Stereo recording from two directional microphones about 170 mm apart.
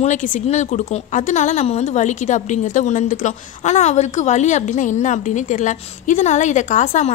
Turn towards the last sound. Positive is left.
turn(degrees=45)  # may be behind; listen again after turning